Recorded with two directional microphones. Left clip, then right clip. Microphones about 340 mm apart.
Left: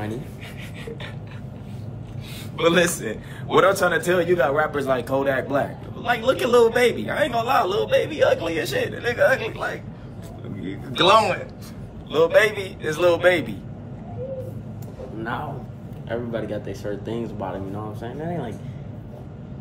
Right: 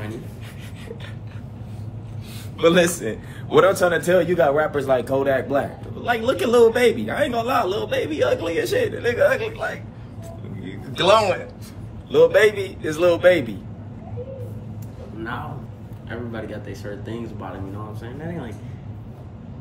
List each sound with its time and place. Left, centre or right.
2.6 s a man's voice: centre
11.0 s a man's voice: centre
16.1 s speech: centre